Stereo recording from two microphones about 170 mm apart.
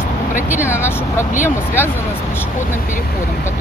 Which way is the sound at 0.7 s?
15° left (ahead or behind).